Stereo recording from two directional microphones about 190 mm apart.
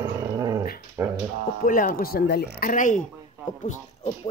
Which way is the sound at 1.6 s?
45° left (ahead or behind).